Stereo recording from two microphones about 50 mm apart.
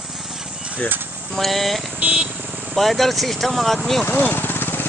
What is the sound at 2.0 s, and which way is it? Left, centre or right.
Speech, right.